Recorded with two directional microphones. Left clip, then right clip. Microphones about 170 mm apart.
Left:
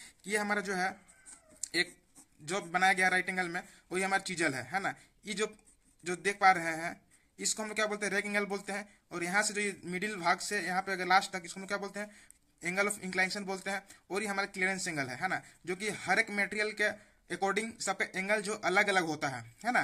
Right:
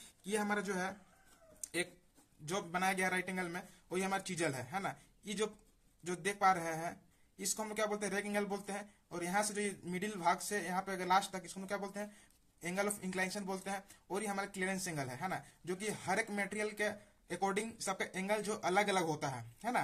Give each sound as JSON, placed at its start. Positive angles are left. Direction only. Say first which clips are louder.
{"t": 0.0, "sound": "a man's voice", "louder": "left 4 dB", "side_deg": 15}
{"t": 2.4, "sound": "speech", "louder": "left 7 dB", "side_deg": 10}